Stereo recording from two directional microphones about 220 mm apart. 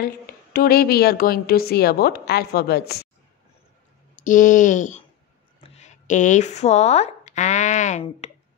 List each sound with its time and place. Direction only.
0.0 s a woman's voice: 45° left (ahead or behind)
4.1 s speech: 35° left (ahead or behind)